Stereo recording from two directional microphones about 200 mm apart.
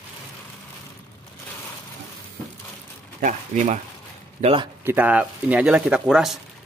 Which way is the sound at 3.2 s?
40° right (ahead or behind).